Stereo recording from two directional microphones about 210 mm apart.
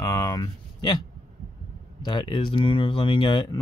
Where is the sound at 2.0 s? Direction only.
20° left (ahead or behind).